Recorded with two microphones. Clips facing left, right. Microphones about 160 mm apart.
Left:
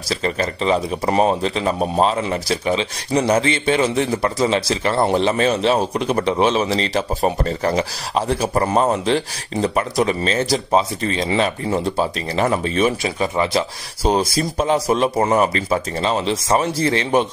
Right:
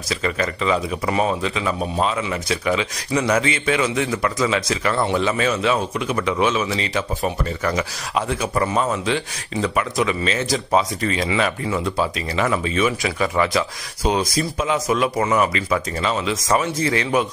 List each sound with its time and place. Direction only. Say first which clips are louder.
0.1 s speech: left 2 dB; 30° left (ahead or behind)